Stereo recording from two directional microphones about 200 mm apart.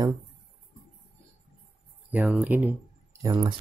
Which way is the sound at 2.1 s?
5° right (ahead or behind).